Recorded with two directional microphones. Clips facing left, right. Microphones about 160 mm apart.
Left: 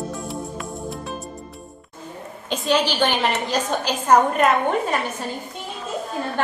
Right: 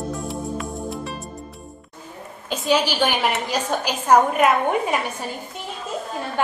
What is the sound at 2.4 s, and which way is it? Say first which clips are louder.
A woman's voice: even; 10° right (ahead or behind).